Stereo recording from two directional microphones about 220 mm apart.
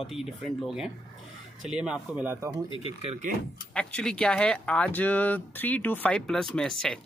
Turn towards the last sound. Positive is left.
turn(degrees=5)  # may be behind; listen again after turning